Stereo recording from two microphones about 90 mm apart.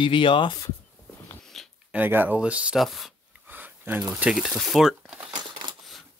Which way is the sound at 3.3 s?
20° right (ahead or behind).